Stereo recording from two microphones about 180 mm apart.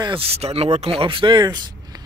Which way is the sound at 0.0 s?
30° right (ahead or behind).